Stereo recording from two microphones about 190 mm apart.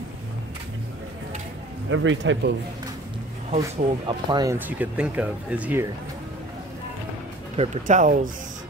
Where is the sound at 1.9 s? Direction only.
85° right.